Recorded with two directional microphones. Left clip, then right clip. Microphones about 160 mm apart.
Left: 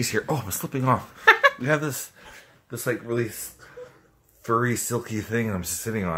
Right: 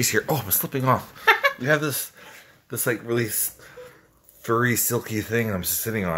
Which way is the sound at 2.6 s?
25° right (ahead or behind).